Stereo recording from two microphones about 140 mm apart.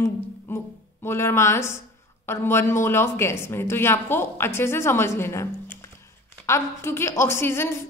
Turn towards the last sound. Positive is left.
turn(degrees=20)  # may be behind; listen again after turning